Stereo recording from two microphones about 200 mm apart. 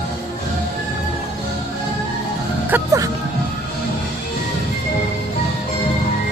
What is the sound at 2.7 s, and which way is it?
Music, 15° right (ahead or behind).